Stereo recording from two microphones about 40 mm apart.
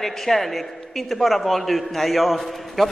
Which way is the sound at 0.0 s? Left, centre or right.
Centre.